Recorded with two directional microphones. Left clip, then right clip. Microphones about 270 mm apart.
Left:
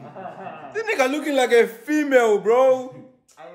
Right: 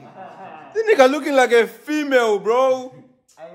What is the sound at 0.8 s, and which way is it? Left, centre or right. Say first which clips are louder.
A man's voice: right 7 dB; right.